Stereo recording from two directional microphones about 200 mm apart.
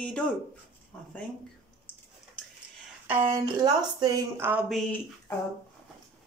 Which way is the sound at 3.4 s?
20° right (ahead or behind).